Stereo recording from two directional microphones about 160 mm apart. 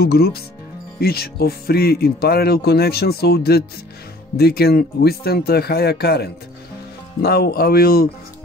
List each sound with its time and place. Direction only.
0.0 s speech: 75° left (ahead or behind)
7.2 s speech: 75° left (ahead or behind)